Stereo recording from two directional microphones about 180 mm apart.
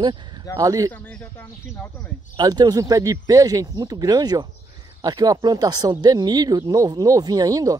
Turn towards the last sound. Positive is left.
turn(degrees=-20)  # may be behind; listen again after turning